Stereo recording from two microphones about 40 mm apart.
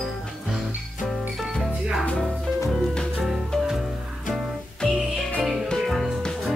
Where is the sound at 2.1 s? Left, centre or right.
Centre.